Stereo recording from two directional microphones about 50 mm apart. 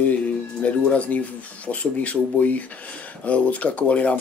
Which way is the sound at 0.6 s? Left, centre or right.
Left.